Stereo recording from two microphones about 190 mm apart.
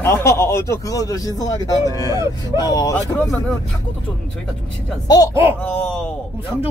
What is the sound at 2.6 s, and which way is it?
Speech, 20° left (ahead or behind).